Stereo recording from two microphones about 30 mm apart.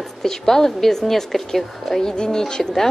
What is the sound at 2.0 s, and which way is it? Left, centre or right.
Speech, left.